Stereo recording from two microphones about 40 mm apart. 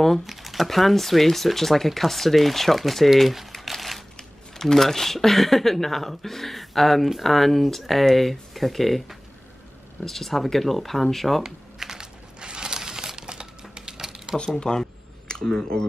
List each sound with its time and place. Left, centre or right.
0.3 s speech: centre
3.2 s crumpling: centre
4.2 s speech: centre
10.0 s speech: centre
11.4 s crumpling: centre
14.4 s speech: centre